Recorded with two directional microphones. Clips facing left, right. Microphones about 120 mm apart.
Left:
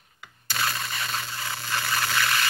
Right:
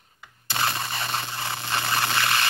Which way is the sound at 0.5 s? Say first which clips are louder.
Right 2 dB; 30° right (ahead or behind).